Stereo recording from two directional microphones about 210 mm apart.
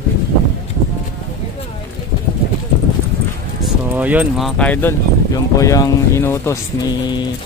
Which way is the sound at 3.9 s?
5° right (ahead or behind).